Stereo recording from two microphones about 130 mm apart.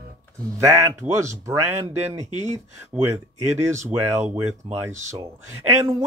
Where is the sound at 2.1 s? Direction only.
65° right (ahead or behind).